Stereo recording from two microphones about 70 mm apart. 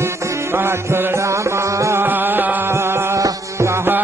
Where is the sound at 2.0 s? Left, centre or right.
Right.